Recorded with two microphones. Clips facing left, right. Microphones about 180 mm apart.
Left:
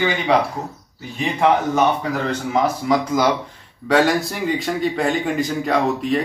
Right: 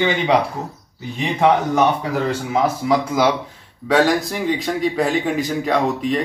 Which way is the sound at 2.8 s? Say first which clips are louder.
Right 1 dB; 5° right (ahead or behind).